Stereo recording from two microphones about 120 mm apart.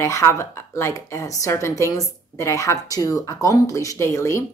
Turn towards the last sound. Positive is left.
turn(degrees=25)  # may be behind; listen again after turning